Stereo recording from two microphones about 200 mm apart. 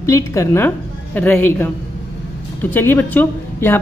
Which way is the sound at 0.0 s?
15° left (ahead or behind).